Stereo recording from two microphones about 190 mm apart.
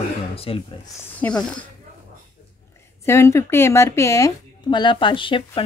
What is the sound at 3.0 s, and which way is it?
Speech, 15° left (ahead or behind).